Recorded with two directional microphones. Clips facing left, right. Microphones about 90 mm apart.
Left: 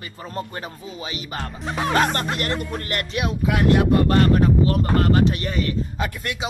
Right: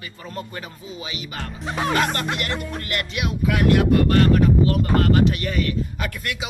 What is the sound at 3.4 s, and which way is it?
Speech, 25° left (ahead or behind).